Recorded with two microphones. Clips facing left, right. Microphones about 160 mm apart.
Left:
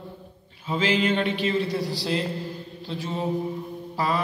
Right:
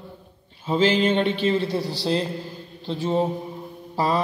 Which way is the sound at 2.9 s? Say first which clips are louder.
Right 7 dB; 30° right (ahead or behind).